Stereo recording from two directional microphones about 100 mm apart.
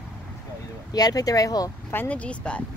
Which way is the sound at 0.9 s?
40° left (ahead or behind).